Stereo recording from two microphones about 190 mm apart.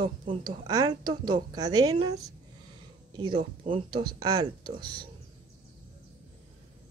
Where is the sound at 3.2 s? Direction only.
25° right (ahead or behind).